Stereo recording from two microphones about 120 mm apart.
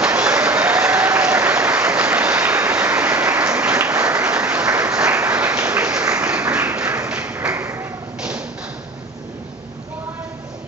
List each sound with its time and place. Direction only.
0.0 s applause: 10° right (ahead or behind)
6.5 s a sound: 15° right (ahead or behind)
8.2 s tap: 10° right (ahead or behind)